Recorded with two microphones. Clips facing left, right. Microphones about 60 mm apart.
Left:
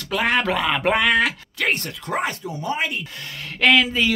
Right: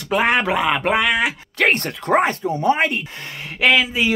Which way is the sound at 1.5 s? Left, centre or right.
Right.